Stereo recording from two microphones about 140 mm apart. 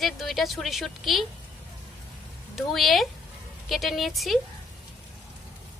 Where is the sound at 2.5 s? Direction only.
Centre (ahead or behind).